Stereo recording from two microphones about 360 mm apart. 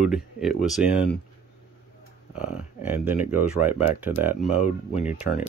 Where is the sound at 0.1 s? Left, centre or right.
Centre.